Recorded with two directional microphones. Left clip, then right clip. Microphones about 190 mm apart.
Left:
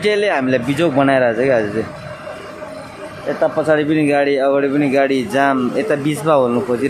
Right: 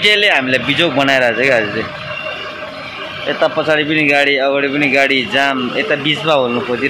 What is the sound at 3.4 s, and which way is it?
Speech, 25° left (ahead or behind).